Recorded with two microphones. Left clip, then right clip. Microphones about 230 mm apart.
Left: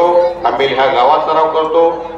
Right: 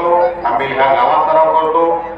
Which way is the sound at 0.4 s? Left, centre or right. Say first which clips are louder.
Left 2 dB; left.